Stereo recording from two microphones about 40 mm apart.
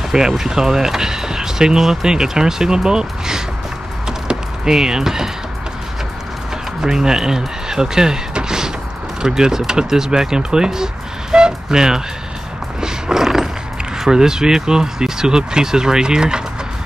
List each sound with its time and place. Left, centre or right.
0.4 s speech: centre
6.8 s speech: centre
12.8 s a sound: centre
13.9 s speech: centre